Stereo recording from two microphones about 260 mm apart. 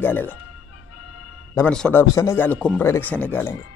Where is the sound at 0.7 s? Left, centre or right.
Left.